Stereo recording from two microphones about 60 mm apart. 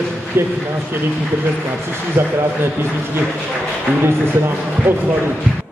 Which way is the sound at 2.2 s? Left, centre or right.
Right.